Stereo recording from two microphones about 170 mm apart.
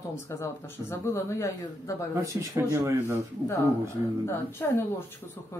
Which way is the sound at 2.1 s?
20° right (ahead or behind).